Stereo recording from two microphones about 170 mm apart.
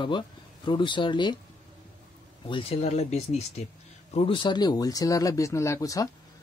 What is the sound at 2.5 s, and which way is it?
A man's voice, 35° left (ahead or behind).